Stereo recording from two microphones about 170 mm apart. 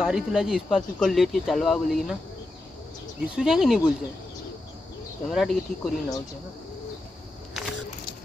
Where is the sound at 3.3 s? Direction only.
5° right (ahead or behind).